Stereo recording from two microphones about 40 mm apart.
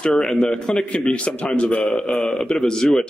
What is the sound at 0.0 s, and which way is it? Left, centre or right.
A man's voice, centre.